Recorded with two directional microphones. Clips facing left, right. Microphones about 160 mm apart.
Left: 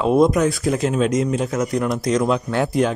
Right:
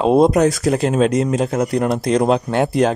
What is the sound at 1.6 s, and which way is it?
Speech, 65° right (ahead or behind).